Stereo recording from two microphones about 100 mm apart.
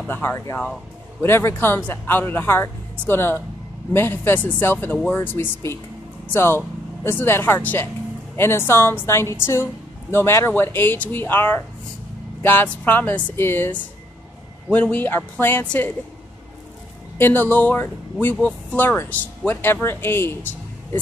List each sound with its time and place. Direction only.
0.1 s speech: 20° left (ahead or behind)
17.2 s speech: 20° left (ahead or behind)